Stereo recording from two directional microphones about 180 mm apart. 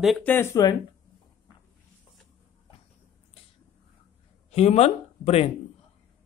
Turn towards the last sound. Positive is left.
turn(degrees=35)  # may be behind; listen again after turning